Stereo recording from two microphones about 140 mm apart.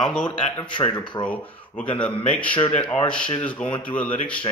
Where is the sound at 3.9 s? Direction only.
10° left (ahead or behind).